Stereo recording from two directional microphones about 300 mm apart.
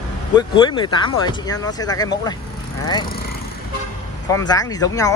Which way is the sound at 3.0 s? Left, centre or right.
Left.